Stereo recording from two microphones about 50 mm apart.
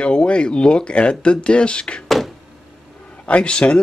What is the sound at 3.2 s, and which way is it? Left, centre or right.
Speech, left.